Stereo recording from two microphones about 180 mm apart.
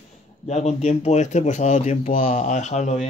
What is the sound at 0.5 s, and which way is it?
Speech, 40° left (ahead or behind).